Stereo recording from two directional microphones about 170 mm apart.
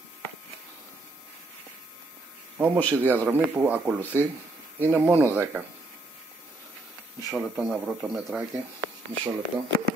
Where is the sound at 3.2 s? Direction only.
10° right (ahead or behind).